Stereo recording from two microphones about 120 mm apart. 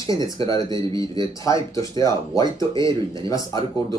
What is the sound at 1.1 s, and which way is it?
Speech, 30° left (ahead or behind).